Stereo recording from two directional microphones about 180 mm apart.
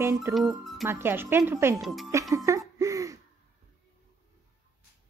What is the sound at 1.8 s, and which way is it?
Speech, centre (ahead or behind).